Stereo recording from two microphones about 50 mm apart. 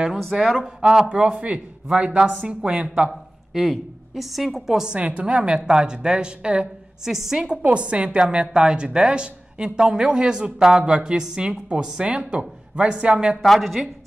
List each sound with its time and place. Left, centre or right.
0.3 s a woman's voice: centre
1.0 s a woman's voice: right
3.1 s a woman's voice: centre
4.9 s a woman's voice: right
7.1 s a woman's voice: centre
13.4 s a woman's voice: centre